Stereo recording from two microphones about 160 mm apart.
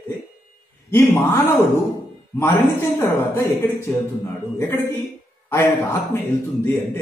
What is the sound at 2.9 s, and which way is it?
A man's voice, 15° left (ahead or behind).